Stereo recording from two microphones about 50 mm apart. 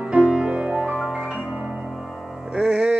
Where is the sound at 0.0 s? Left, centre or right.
Right.